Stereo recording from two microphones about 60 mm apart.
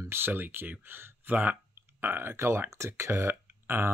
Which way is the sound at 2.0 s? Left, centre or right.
Right.